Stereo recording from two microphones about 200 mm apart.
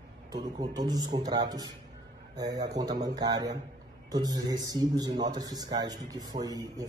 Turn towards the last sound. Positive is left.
turn(degrees=-20)  # may be behind; listen again after turning